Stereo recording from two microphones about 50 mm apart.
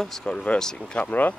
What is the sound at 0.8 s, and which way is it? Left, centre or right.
Speech, left.